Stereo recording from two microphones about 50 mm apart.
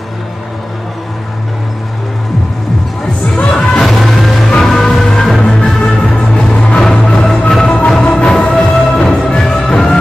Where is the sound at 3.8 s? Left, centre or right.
Centre; by 6.8 s left.